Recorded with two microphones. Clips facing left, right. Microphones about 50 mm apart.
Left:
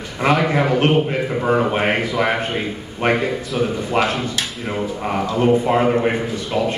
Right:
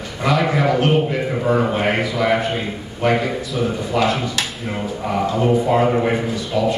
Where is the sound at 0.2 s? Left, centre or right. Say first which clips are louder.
Left 1 dB; left.